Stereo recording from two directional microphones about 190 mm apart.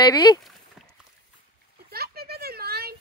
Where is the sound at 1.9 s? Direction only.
55° right (ahead or behind).